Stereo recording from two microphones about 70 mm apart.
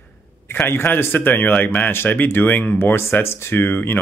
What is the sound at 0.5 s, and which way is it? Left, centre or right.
Speech, left.